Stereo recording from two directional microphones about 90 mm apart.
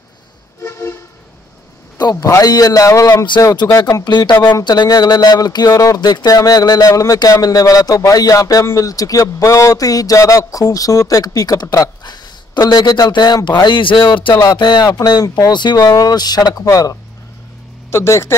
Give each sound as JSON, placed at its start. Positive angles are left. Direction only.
{"t": 0.7, "sound": "vehicle", "side_deg": 30}
{"t": 2.0, "sound": "speech", "side_deg": 45}
{"t": 3.7, "sound": "speech", "side_deg": 45}
{"t": 11.6, "sound": "speech", "side_deg": 35}
{"t": 12.0, "sound": "a sound", "side_deg": 50}
{"t": 12.7, "sound": "speech", "side_deg": 50}
{"t": 14.4, "sound": "speech", "side_deg": 50}